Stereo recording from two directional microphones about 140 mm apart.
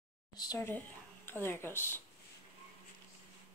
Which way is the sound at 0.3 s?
30° left (ahead or behind).